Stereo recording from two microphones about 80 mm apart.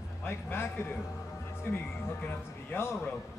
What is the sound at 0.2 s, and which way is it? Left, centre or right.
A man's voice, left.